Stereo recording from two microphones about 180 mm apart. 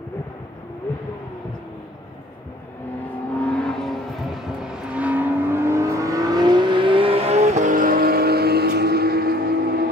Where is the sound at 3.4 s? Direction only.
5° left (ahead or behind); by 9.8 s 60° right (ahead or behind).